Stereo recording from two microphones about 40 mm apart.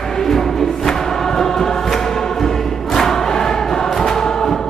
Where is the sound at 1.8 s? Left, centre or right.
Centre.